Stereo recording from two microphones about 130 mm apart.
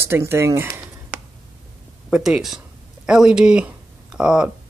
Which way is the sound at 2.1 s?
5° right (ahead or behind).